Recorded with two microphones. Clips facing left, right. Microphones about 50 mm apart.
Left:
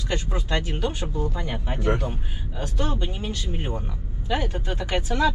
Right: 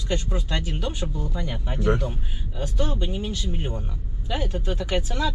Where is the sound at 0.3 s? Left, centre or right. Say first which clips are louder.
Left 2 dB; left.